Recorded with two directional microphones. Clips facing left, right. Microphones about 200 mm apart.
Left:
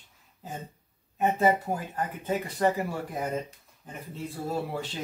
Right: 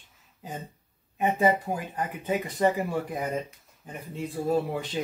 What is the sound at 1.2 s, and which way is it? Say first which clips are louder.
Speech: even; 15° right (ahead or behind).